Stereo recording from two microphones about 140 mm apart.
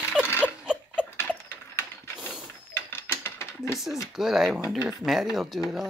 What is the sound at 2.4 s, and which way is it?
Mechanisms, 15° left (ahead or behind).